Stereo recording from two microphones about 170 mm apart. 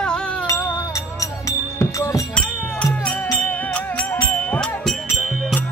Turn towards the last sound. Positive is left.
turn(degrees=0)  # may be behind; listen again after turning